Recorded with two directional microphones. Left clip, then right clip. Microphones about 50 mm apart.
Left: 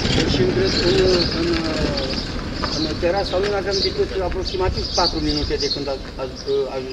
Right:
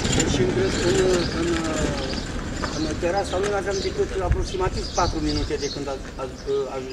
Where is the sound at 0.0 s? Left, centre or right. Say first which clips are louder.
Left 3 dB; centre.